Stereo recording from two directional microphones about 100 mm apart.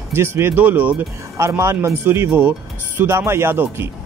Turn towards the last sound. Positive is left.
turn(degrees=-20)  # may be behind; listen again after turning